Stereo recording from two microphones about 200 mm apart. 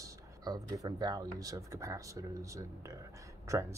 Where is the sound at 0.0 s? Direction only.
15° right (ahead or behind).